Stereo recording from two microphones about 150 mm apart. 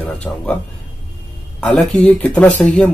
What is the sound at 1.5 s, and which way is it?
Speech, 5° left (ahead or behind).